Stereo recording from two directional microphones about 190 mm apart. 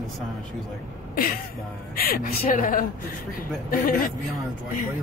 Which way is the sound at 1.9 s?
50° left (ahead or behind).